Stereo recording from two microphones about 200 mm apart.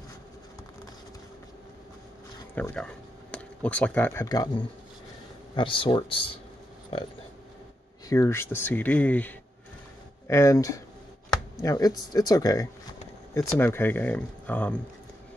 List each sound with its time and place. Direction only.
2.5 s speech: 5° left (ahead or behind); by 6.4 s 25° left (ahead or behind)
8.1 s speech: 15° left (ahead or behind)